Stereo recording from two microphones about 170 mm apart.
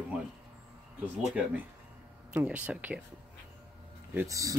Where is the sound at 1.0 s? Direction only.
10° right (ahead or behind).